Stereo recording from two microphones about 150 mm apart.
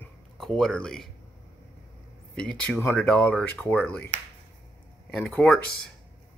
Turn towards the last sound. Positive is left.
turn(degrees=5)  # may be behind; listen again after turning